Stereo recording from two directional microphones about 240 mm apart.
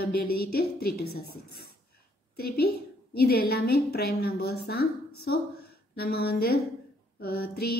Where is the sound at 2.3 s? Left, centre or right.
Left.